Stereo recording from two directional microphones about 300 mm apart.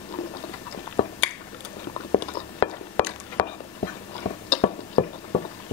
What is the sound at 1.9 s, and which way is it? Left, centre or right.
Chewing, centre.